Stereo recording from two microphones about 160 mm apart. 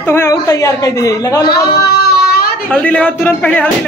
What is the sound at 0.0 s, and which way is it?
A woman's voice, 15° left (ahead or behind).